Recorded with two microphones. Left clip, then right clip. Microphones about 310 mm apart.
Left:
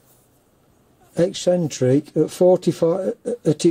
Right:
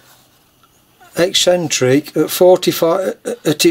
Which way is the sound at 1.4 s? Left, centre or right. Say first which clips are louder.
Right 6 dB; centre.